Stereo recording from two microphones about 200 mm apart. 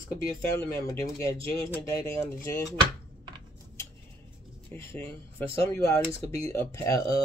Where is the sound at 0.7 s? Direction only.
15° left (ahead or behind).